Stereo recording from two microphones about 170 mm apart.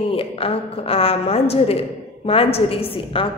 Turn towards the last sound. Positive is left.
turn(degrees=30)  # may be behind; listen again after turning